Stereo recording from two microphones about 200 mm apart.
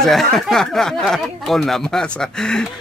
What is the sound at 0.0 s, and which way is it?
Speech, centre (ahead or behind).